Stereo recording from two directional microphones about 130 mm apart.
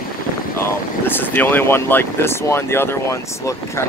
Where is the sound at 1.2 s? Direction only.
15° left (ahead or behind).